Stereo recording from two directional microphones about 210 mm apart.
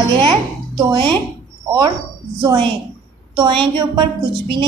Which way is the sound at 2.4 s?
20° right (ahead or behind).